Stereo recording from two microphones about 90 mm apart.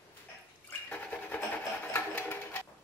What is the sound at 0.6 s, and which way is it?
Toothbrush, 15° left (ahead or behind).